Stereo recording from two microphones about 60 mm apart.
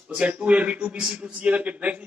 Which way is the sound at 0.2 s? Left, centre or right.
Right.